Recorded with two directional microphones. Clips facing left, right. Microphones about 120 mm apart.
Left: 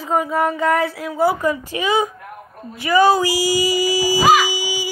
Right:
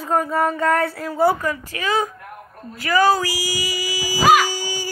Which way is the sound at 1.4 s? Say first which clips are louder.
Left 4 dB; 20° left (ahead or behind).